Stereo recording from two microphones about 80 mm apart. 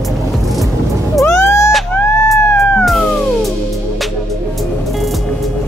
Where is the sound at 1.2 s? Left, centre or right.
Left.